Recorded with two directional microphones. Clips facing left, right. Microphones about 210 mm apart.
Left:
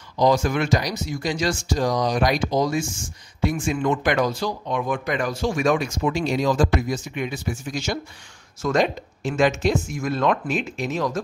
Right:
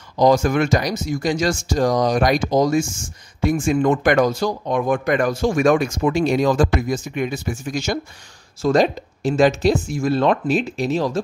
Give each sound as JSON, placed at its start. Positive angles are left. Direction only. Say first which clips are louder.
{"t": 0.2, "sound": "speech", "louder": "right 4 dB", "side_deg": -50}
{"t": 8.6, "sound": "speech", "louder": "right 4 dB", "side_deg": -35}